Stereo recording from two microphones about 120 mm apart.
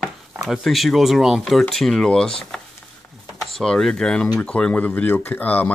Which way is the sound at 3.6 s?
5° left (ahead or behind).